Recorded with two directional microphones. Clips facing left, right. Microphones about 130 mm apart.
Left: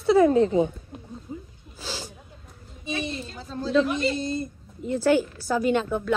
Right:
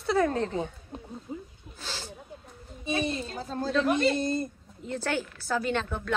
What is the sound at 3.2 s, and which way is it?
Speech, 45° right (ahead or behind).